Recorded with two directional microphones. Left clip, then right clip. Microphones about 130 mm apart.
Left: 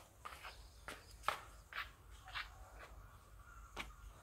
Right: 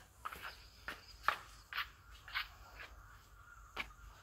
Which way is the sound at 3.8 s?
15° right (ahead or behind).